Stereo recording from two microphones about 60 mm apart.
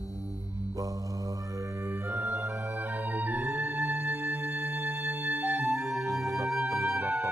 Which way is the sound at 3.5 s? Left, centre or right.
Right.